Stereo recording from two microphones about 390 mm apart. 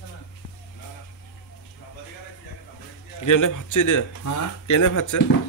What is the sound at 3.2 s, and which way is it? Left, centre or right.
A man's voice, left.